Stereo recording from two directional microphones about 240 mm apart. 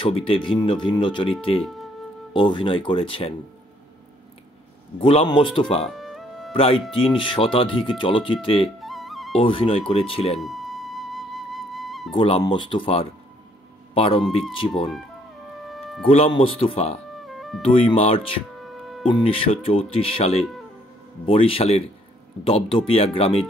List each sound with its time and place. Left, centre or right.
0.0 s speech: left
1.6 s music: centre
2.3 s speech: centre
5.0 s speech: left
5.9 s music: centre
6.5 s speech: left
8.8 s music: centre
9.4 s speech: left
10.3 s music: centre
12.1 s speech: left
15.6 s music: centre
16.3 s speech: left
17.3 s music: centre
17.6 s speech: left